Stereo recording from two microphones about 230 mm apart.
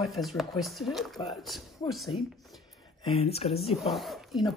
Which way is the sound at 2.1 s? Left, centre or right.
Left.